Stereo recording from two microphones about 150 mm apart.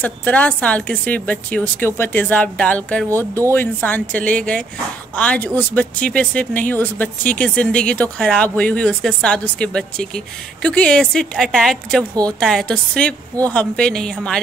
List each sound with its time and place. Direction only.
0.0 s a woman's voice: 10° left (ahead or behind)